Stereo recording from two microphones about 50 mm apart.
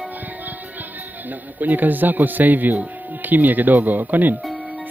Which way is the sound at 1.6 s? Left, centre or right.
Right.